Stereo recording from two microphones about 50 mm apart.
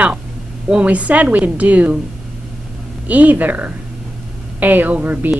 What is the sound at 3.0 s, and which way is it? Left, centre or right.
A woman's voice, right.